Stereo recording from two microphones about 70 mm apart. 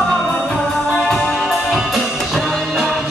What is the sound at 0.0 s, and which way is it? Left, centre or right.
Music, centre.